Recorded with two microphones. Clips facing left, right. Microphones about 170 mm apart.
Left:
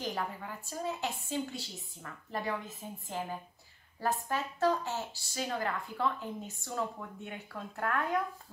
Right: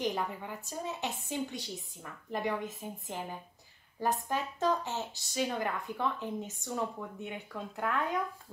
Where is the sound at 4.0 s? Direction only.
20° right (ahead or behind).